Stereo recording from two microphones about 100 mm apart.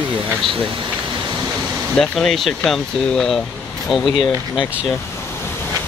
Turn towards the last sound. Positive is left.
turn(degrees=0)  # may be behind; listen again after turning